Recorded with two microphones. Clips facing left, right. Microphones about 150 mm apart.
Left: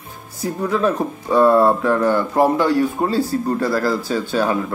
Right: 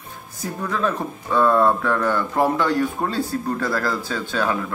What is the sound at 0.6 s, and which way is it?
Speech, 15° left (ahead or behind).